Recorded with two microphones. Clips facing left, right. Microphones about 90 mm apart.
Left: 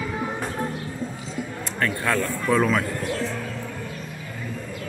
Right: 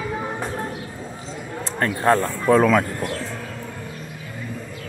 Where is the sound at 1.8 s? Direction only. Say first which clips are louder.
Right 5 dB; 35° right (ahead or behind).